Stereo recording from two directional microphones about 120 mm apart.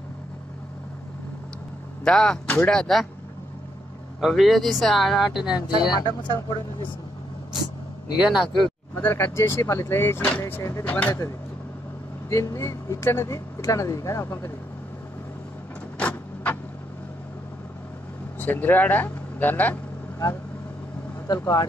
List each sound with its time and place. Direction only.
2.0 s speech: 5° left (ahead or behind)
4.2 s speech: centre (ahead or behind)
5.7 s speech: 35° left (ahead or behind)
8.3 s speech: centre (ahead or behind)
8.9 s speech: 20° left (ahead or behind)
16.0 s vehicle: 10° left (ahead or behind)
18.4 s speech: 15° left (ahead or behind)
21.3 s speech: 35° left (ahead or behind)